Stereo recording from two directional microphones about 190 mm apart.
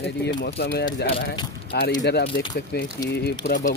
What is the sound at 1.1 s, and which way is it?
Speech, 25° left (ahead or behind).